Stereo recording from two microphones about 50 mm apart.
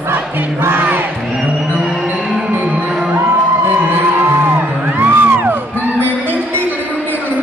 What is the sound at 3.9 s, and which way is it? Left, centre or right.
Music, right.